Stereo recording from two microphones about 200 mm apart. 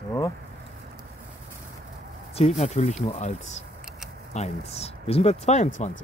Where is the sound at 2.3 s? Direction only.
35° left (ahead or behind).